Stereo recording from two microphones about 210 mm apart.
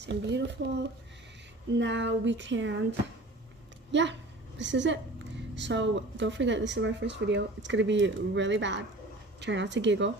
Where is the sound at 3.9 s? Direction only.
60° right (ahead or behind).